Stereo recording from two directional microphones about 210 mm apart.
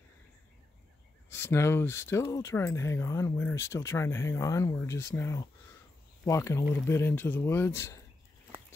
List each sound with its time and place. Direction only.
1.3 s speech: 10° left (ahead or behind)